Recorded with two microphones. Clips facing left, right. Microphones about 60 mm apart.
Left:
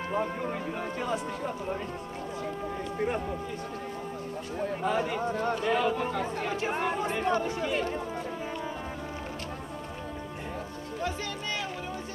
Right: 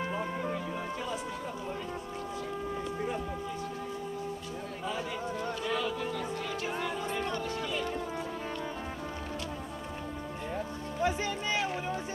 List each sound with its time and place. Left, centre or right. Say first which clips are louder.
4.8 s speech: left 6 dB; left
7.2 s speech: left 6 dB; left
7.6 s speech: left 4 dB; left
11.0 s speech: right 3 dB; centre